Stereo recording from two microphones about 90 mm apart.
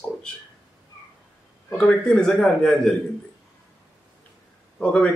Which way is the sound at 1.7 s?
10° left (ahead or behind).